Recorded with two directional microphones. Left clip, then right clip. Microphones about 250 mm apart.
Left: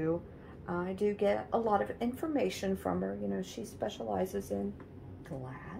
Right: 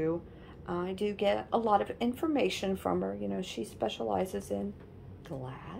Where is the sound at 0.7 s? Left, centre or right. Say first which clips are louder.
Even; centre.